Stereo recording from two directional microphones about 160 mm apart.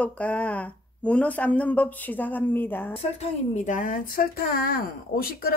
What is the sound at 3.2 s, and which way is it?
Speech, 50° left (ahead or behind).